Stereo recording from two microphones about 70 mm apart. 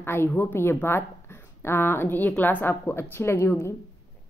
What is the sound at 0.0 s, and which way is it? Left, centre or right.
A woman's voice, left.